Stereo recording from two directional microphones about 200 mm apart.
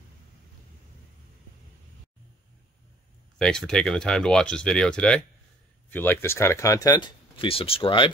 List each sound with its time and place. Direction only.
3.3 s speech: 5° left (ahead or behind); by 8.1 s 25° left (ahead or behind)